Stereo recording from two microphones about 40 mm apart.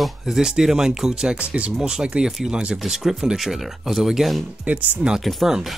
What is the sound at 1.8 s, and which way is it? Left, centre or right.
Speech, centre.